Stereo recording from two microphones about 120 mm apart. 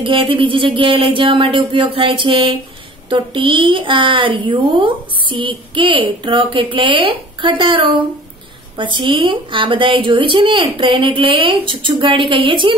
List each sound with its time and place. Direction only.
0.0 s a woman's voice: 45° right (ahead or behind)